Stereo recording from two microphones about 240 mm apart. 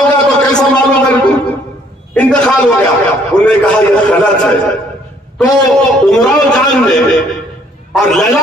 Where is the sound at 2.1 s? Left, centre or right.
Centre.